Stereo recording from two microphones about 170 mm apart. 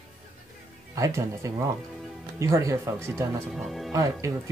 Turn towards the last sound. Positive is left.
turn(degrees=-20)  # may be behind; listen again after turning